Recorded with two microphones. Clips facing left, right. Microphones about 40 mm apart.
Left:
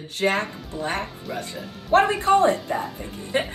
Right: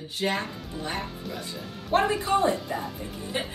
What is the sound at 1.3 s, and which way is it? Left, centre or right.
Speech, left.